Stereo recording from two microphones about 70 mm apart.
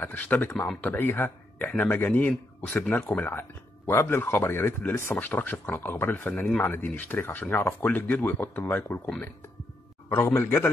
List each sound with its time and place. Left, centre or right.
0.0 s speech: left